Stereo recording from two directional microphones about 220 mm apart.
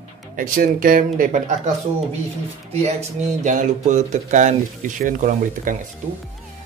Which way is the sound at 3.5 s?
35° right (ahead or behind).